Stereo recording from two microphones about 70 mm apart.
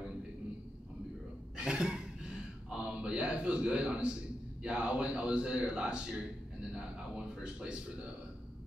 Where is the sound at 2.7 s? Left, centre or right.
Centre.